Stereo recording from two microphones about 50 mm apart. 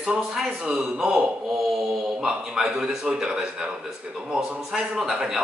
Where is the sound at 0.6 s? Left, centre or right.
Centre.